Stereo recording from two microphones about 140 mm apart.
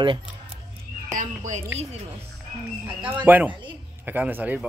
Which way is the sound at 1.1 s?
65° right (ahead or behind).